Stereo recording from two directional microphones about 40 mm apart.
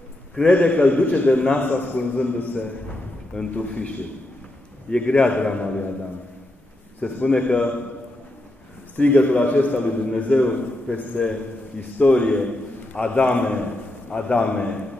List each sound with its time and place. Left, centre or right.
0.4 s a man's voice: left
3.5 s a man's voice: left
4.9 s a man's voice: left
7.2 s a man's voice: left
8.9 s a man's voice: left